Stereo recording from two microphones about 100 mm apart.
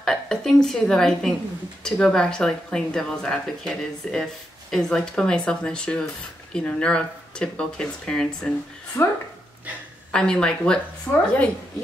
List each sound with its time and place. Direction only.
0.0 s a woman's voice: 5° left (ahead or behind)
9.0 s speech: 20° left (ahead or behind)
10.1 s speech: 10° left (ahead or behind)